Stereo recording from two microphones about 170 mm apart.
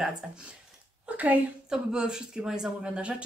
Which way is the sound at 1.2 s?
5° right (ahead or behind).